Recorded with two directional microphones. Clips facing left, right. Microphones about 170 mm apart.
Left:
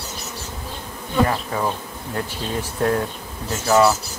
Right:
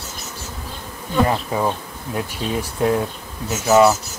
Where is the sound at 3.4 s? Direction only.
5° right (ahead or behind).